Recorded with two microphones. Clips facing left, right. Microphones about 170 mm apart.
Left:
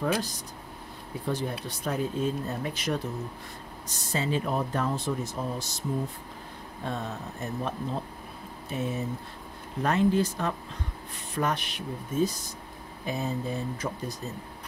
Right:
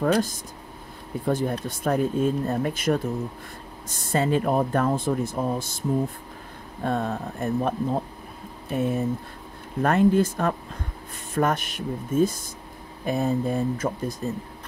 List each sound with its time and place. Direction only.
0.0 s speech: 50° right (ahead or behind)